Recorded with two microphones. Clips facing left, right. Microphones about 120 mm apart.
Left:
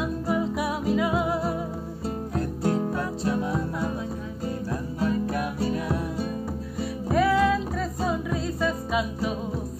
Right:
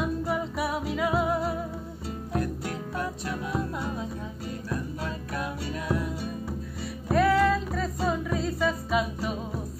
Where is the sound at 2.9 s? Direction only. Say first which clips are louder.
Left 5 dB; 25° left (ahead or behind).